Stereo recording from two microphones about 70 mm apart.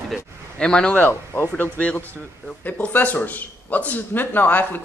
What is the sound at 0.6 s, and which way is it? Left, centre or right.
Speech, centre.